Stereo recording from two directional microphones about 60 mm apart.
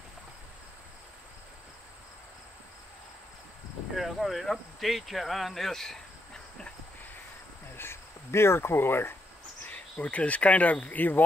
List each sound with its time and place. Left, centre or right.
3.9 s speech: centre
7.7 s speech: left
9.6 s speech: left